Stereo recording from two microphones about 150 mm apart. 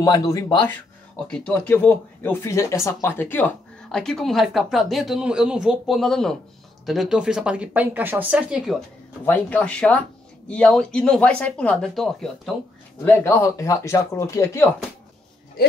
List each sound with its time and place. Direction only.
0.0 s speech: 25° left (ahead or behind)
1.2 s speech: 5° left (ahead or behind)
9.2 s speech: 10° left (ahead or behind)
13.0 s speech: 15° left (ahead or behind)